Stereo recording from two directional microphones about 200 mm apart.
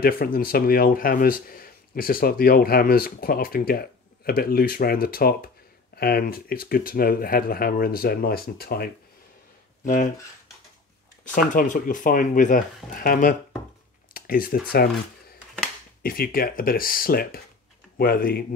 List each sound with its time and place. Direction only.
0.0 s speech: 50° left (ahead or behind)
11.3 s speech: 40° left (ahead or behind)
14.1 s a sound: 45° left (ahead or behind)
16.0 s speech: 45° left (ahead or behind)